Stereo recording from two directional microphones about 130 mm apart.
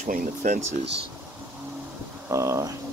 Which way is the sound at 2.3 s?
25° right (ahead or behind).